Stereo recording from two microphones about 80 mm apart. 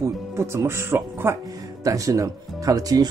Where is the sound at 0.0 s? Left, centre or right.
Right.